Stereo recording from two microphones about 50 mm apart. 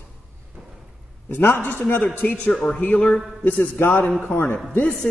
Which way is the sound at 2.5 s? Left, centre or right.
Centre.